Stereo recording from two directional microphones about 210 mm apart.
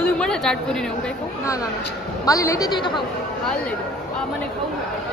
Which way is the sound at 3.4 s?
5° left (ahead or behind).